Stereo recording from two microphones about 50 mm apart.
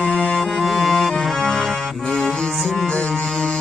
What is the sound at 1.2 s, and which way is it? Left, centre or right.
Accordion, centre.